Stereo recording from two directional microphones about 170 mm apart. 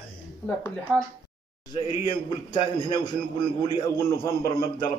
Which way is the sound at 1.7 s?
30° left (ahead or behind).